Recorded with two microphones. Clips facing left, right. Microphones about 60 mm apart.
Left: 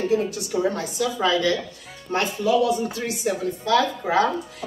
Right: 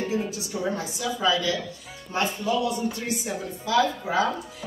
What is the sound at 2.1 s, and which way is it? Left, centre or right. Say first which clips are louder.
Speech: left 5 dB; left.